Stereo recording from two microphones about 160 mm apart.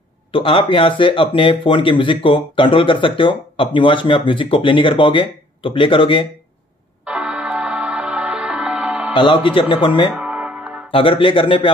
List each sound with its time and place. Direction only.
0.3 s speech: 35° left (ahead or behind)
7.1 s music: 5° right (ahead or behind)
9.1 s speech: 30° left (ahead or behind)
10.1 s music: 10° right (ahead or behind)
10.9 s speech: 35° left (ahead or behind)